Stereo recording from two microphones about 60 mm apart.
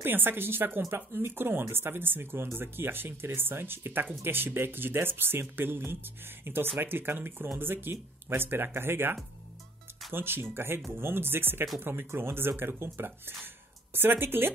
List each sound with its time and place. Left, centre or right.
0.0 s speech: right